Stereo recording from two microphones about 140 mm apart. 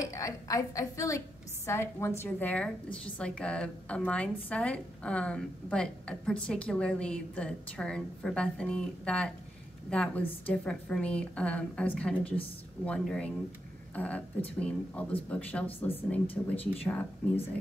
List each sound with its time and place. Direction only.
0.0 s a woman's voice: 25° left (ahead or behind)